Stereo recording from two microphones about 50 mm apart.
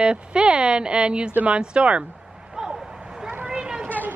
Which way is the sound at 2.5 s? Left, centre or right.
Centre.